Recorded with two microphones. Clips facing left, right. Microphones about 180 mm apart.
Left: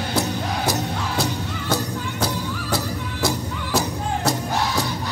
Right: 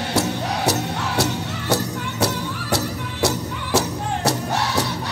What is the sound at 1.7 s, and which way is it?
Music, 75° right (ahead or behind).